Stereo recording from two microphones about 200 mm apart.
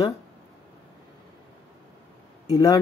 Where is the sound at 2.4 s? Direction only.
25° left (ahead or behind).